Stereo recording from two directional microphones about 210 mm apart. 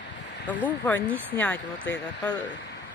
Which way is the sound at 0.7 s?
5° left (ahead or behind).